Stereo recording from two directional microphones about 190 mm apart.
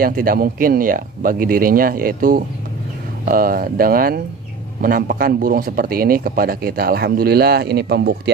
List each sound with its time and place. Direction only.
0.0 s speech: 50° right (ahead or behind)